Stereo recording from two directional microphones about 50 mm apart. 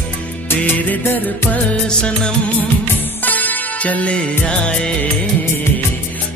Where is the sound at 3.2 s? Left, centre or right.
Left.